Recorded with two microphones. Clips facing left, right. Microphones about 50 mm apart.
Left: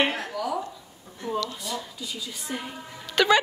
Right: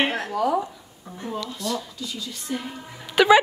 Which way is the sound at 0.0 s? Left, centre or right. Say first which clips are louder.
Right 3 dB; right.